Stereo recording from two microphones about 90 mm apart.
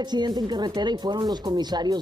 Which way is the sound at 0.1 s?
50° right (ahead or behind).